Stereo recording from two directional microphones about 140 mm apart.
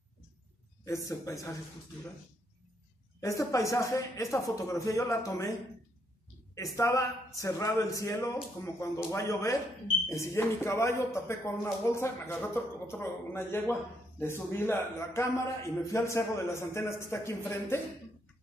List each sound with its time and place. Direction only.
0.8 s speech: 20° left (ahead or behind)
3.2 s speech: 20° left (ahead or behind)
6.5 s speech: 20° left (ahead or behind)